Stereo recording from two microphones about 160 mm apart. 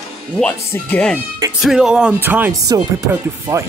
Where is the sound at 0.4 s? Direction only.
10° left (ahead or behind).